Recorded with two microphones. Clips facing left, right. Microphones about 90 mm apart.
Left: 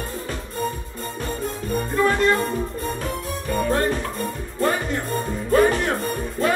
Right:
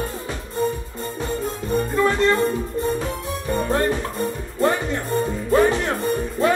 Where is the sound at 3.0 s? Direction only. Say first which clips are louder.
Right 1 dB; 25° right (ahead or behind).